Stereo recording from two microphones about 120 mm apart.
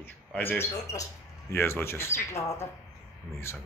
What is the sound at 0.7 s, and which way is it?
Speech, 30° left (ahead or behind).